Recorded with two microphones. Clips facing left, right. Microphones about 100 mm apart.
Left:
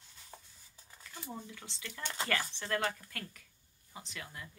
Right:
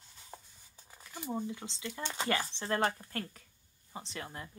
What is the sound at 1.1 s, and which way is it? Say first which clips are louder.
Speech: right 8 dB; 20° right (ahead or behind).